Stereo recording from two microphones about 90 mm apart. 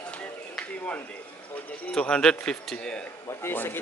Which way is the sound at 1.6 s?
15° left (ahead or behind).